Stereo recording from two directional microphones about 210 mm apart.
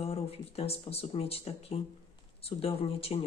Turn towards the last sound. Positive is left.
turn(degrees=25)  # may be behind; listen again after turning